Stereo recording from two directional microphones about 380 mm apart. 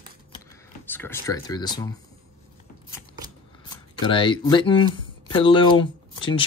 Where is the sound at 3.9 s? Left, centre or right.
Centre.